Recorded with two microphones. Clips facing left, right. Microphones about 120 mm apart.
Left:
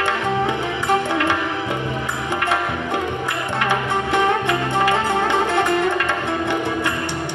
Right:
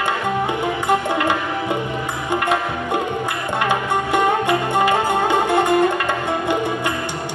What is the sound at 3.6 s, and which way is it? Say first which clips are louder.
Music: right 1 dB; 15° right (ahead or behind).